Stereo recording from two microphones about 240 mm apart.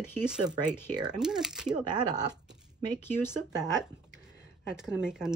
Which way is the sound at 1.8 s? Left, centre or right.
Centre.